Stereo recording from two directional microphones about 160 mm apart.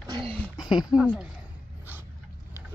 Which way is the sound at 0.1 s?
35° right (ahead or behind).